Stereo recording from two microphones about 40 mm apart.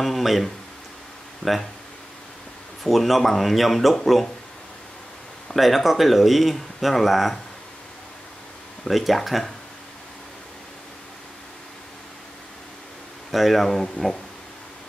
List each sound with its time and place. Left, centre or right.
0.0 s speech: centre
1.4 s speech: left
2.8 s speech: centre
5.5 s speech: centre
8.8 s speech: centre
13.3 s speech: centre